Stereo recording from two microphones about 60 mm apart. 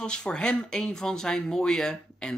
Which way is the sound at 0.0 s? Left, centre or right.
Centre.